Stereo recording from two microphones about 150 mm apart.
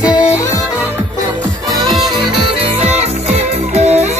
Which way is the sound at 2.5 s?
45° right (ahead or behind).